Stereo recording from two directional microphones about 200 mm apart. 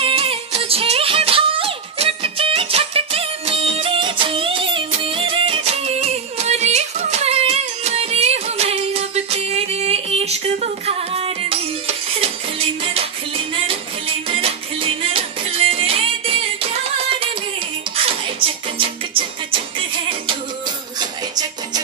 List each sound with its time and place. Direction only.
0.0 s music: 30° right (ahead or behind)
18.8 s music: 25° right (ahead or behind)
21.0 s music: 20° right (ahead or behind)